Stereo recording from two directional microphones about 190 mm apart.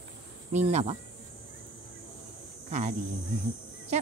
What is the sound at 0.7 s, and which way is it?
Speech, 35° right (ahead or behind).